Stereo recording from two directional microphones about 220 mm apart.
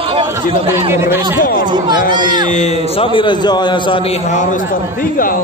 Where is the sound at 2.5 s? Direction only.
30° left (ahead or behind).